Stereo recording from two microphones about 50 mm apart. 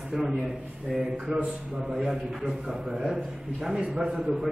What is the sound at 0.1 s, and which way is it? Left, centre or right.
Speech, centre.